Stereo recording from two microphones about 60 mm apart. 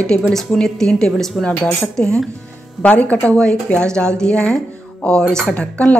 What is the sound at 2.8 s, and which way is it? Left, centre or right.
Speech, left.